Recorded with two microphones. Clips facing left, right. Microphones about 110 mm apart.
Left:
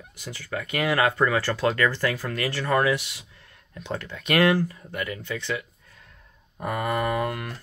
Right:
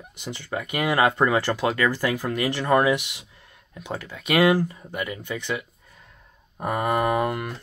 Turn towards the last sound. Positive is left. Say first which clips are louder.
# right 3 dB
turn(degrees=-20)  # may be behind; listen again after turning